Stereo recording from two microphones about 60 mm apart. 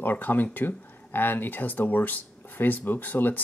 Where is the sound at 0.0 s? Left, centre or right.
Left.